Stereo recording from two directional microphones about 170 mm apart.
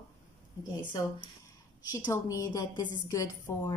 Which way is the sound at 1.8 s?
20° left (ahead or behind).